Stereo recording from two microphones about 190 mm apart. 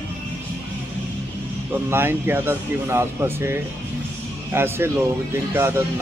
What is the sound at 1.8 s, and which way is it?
Speech, 10° right (ahead or behind).